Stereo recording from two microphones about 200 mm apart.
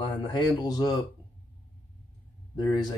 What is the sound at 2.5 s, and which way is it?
Speech, 20° left (ahead or behind).